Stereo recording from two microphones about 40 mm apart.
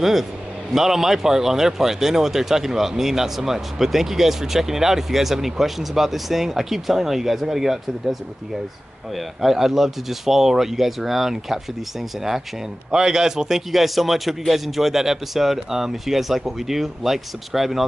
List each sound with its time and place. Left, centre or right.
0.0 s speech: centre
9.4 s speech: centre
12.9 s speech: centre
13.7 s speech: centre